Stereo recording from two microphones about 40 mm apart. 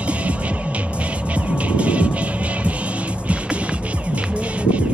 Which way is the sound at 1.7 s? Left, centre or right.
Right.